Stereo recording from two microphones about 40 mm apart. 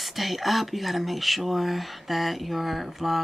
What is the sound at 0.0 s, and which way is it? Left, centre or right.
Speech, centre.